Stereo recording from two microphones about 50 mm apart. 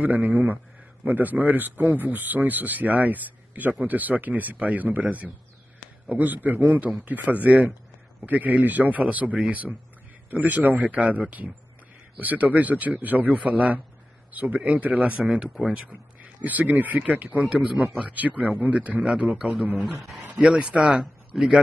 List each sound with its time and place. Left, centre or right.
0.0 s speech: right
15.2 s speech: centre; by 20.0 s right
20.3 s speech: centre